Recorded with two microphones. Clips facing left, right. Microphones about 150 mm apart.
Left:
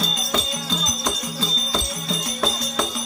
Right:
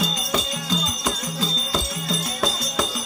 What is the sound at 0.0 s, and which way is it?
Music, 5° right (ahead or behind).